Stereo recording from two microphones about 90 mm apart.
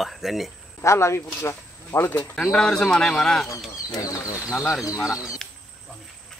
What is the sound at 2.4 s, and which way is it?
A man's voice, 5° left (ahead or behind).